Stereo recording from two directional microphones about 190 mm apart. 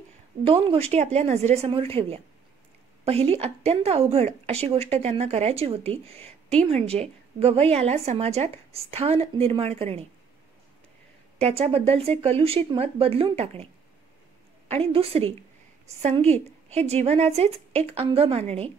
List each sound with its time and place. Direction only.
0.4 s a woman's voice: 30° right (ahead or behind)
11.3 s a woman's voice: 35° right (ahead or behind)
14.7 s a woman's voice: 30° right (ahead or behind)